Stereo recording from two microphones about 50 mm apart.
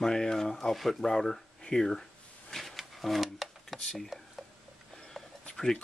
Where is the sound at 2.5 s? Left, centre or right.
Centre.